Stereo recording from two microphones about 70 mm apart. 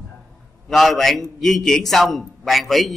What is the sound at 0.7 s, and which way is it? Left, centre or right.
A man's voice, centre.